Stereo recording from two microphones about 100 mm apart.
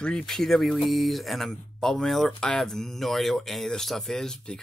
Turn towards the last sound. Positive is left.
turn(degrees=5)  # may be behind; listen again after turning